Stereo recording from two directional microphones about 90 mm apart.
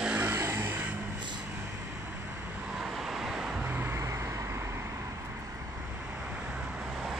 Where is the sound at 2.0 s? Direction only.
20° right (ahead or behind).